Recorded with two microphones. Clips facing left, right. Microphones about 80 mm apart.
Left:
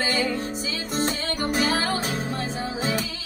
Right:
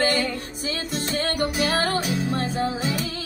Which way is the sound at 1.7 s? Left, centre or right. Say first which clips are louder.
Right 1 dB; right.